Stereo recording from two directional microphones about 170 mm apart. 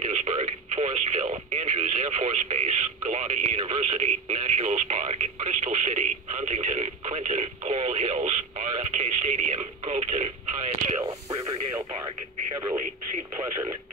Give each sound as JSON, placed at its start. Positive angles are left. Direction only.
{"t": 0.0, "sound": "radio", "side_deg": -45}
{"t": 11.0, "sound": "radio", "side_deg": -20}
{"t": 13.4, "sound": "radio", "side_deg": -20}